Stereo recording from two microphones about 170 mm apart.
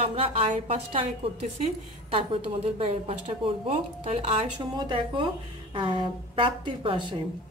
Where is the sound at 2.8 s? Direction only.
35° right (ahead or behind).